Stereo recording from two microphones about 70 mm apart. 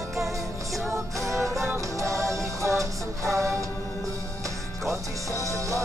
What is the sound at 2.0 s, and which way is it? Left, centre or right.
Music, right.